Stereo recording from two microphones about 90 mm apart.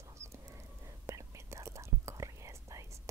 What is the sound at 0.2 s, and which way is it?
Whispering, 30° right (ahead or behind).